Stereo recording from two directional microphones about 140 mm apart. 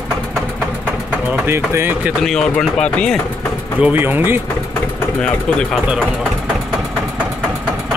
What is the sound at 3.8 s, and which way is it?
Speech, 15° right (ahead or behind).